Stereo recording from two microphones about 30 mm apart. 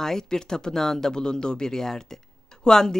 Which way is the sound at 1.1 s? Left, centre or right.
Left.